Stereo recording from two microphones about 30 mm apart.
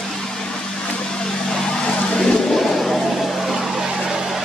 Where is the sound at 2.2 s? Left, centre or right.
Left.